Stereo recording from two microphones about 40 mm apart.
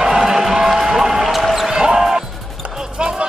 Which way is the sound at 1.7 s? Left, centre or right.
Centre.